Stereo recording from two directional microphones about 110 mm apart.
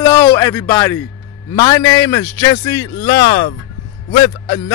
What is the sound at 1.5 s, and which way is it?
Speech, 35° left (ahead or behind).